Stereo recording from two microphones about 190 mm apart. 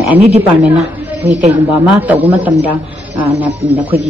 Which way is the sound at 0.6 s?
5° right (ahead or behind).